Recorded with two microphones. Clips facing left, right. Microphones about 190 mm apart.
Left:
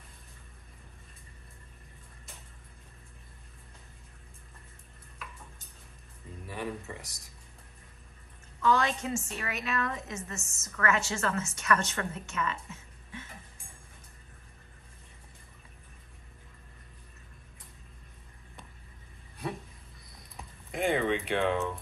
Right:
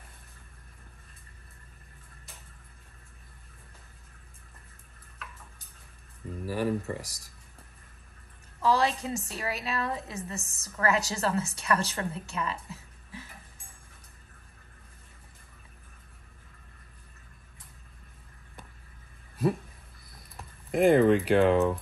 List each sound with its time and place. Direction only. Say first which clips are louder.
6.4 s speech: right 8 dB; centre (ahead or behind)
8.5 s a woman's voice: right 1 dB; 35° right (ahead or behind)
20.2 s typing: even; centre (ahead or behind)
21.1 s speech: right 7 dB; centre (ahead or behind)